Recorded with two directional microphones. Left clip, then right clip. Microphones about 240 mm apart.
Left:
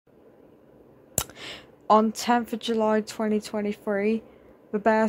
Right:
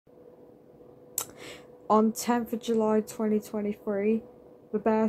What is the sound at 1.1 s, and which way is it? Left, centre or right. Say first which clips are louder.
Speech: left 6 dB; centre.